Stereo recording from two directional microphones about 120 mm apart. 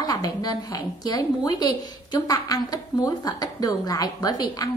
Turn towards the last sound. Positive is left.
turn(degrees=30)  # may be behind; listen again after turning